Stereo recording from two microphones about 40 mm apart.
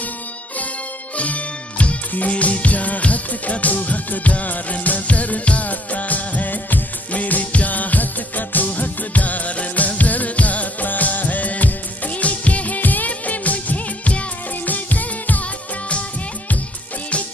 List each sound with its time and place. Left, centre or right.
1.1 s music: left